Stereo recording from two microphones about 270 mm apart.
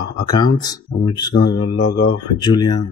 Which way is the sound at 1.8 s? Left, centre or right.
Left.